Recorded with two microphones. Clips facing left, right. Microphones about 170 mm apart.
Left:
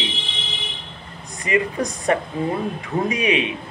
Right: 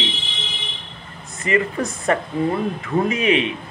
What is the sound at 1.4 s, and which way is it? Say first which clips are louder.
A man's voice: right 1 dB; 15° left (ahead or behind).